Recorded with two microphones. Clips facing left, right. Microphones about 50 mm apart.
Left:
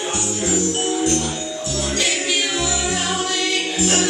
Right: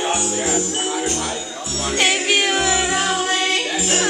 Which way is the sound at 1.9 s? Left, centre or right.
Right.